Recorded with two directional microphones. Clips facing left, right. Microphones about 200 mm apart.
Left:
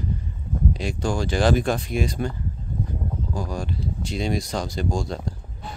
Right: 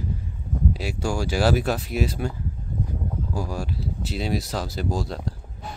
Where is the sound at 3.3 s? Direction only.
5° right (ahead or behind).